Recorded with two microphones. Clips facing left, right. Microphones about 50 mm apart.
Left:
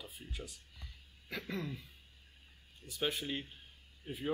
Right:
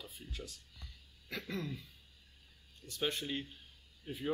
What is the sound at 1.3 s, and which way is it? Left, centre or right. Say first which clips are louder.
Speech: even; centre.